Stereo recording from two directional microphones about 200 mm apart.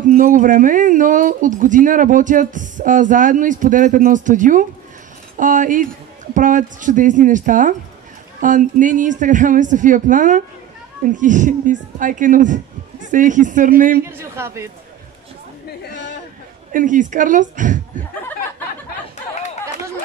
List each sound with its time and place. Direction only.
0.1 s speech: 40° right (ahead or behind)
14.0 s a man's voice: 15° right (ahead or behind)
16.7 s speech: 40° right (ahead or behind)